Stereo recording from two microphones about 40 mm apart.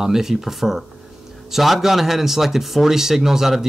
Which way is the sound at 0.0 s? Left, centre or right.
Centre.